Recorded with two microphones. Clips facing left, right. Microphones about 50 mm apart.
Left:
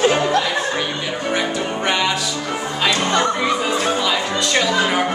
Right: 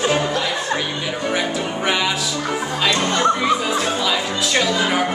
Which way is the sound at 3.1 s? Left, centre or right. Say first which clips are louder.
Right 1 dB; centre.